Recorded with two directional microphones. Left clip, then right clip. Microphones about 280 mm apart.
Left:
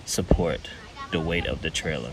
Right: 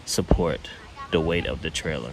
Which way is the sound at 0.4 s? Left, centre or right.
Centre.